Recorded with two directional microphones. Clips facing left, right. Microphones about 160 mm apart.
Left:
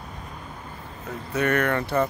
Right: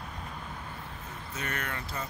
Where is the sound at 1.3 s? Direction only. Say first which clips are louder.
Left 15 dB; 65° left (ahead or behind).